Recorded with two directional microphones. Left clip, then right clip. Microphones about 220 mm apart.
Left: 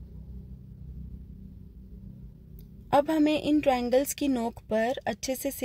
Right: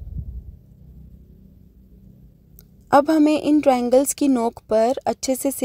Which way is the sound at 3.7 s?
30° right (ahead or behind).